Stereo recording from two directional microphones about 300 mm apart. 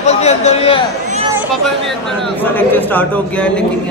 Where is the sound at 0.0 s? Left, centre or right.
Left.